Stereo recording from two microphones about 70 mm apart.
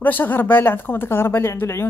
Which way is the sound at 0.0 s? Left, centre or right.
Left.